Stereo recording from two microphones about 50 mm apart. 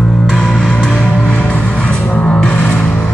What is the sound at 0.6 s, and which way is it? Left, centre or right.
Music, centre.